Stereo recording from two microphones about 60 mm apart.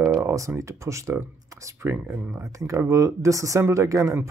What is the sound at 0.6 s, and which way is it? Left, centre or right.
Speech, right.